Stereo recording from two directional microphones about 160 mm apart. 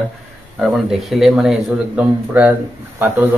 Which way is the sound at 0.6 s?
Centre (ahead or behind).